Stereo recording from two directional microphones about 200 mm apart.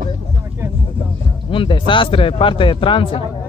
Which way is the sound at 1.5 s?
25° left (ahead or behind).